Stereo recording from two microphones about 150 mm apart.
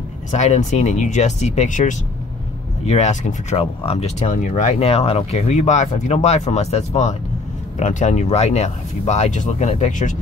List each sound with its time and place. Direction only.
0.4 s speech: 50° left (ahead or behind)